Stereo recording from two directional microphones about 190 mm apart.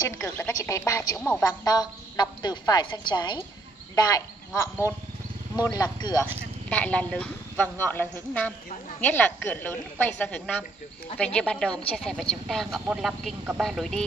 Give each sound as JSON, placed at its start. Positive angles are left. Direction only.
{"t": 0.0, "sound": "a woman's voice", "side_deg": 15}
{"t": 6.7, "sound": "speech", "side_deg": 5}